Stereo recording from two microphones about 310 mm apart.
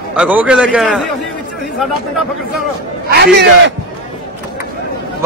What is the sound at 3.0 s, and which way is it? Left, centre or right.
Speech, right.